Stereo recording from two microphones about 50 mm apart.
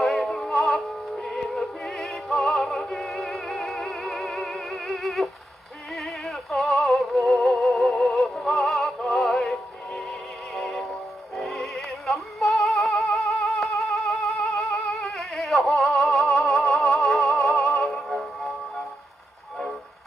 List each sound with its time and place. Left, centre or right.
0.0 s synthetic singing: centre
1.2 s music: centre